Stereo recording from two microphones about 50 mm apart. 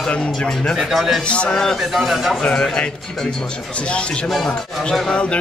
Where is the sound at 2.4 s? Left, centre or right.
Centre.